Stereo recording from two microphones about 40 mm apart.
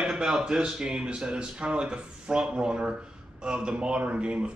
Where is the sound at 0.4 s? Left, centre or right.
Right.